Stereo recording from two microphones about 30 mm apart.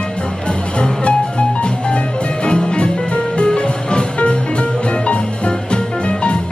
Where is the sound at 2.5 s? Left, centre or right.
Left.